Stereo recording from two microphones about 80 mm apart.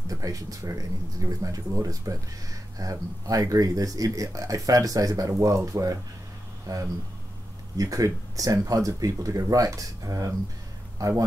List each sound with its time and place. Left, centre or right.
0.1 s a man's voice: right